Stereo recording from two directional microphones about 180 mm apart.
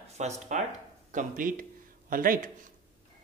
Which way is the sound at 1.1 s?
50° right (ahead or behind).